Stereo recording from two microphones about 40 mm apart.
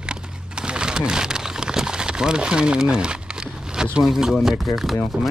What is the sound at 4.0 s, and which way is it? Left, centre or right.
Speech, centre.